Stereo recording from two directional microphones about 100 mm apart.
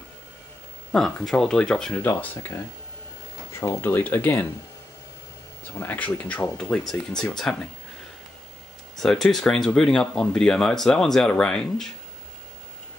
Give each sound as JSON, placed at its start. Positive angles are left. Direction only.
{"t": 0.9, "sound": "speech", "side_deg": 5}
{"t": 2.0, "sound": "speech", "side_deg": 20}
{"t": 5.7, "sound": "speech", "side_deg": 15}
{"t": 8.9, "sound": "speech", "side_deg": 5}